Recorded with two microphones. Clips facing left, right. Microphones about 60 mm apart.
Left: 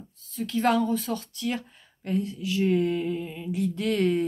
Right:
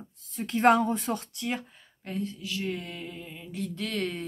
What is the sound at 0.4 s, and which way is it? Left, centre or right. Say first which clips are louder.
Speech: right 2 dB; right.